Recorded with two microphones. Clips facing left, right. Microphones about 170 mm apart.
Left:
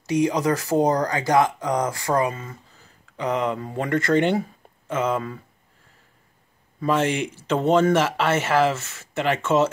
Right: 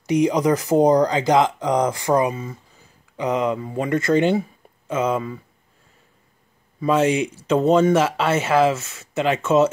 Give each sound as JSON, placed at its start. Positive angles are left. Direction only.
{"t": 0.0, "sound": "speech", "side_deg": -15}
{"t": 6.8, "sound": "speech", "side_deg": -10}